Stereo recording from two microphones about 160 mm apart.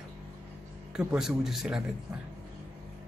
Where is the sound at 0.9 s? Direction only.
5° right (ahead or behind).